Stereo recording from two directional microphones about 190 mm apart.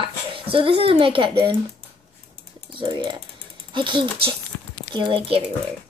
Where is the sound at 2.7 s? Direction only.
25° right (ahead or behind).